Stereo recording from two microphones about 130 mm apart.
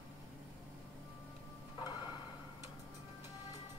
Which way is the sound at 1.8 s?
35° left (ahead or behind).